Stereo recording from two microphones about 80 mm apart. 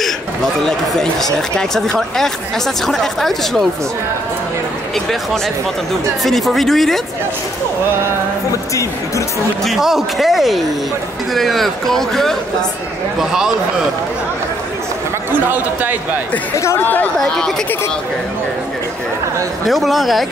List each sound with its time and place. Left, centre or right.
1.3 s speech: centre
6.2 s speech: centre
9.7 s speech: centre
13.2 s a man's voice: centre
15.3 s a man's voice: right
16.5 s speech: left
16.8 s speech: left
19.6 s speech: centre